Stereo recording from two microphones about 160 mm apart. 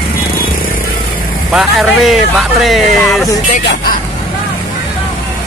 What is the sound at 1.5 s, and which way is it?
Speech, centre (ahead or behind).